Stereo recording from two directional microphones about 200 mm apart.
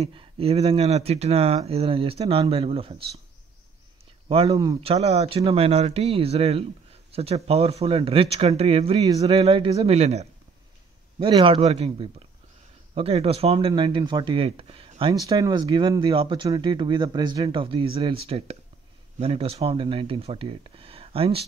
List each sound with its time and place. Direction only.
0.0 s speech: 25° right (ahead or behind)
4.3 s speech: 30° right (ahead or behind)